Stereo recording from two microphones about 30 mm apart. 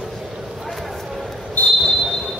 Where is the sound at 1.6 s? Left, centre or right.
Left.